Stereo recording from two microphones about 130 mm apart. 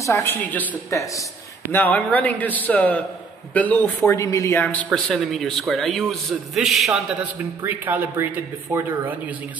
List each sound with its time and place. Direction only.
0.0 s a man's voice: 20° left (ahead or behind)
0.8 s speech: 25° left (ahead or behind)
1.7 s a man's voice: 15° left (ahead or behind); by 7.2 s centre (ahead or behind)
7.6 s speech: 15° right (ahead or behind)